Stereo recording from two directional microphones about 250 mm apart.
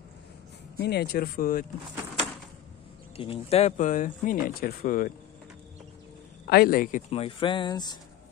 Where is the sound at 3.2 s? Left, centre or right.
Left.